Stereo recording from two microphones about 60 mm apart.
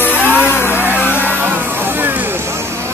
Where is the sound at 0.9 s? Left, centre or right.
Left.